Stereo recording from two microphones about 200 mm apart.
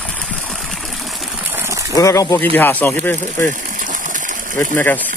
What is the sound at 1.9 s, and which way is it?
Speech, 15° left (ahead or behind).